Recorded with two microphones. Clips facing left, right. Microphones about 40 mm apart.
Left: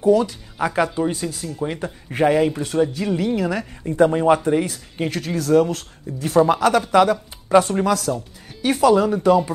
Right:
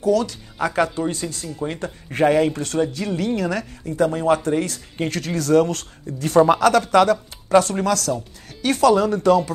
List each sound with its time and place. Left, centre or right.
0.0 s speech: left
0.6 s speech: centre
3.9 s speech: left
4.2 s speech: centre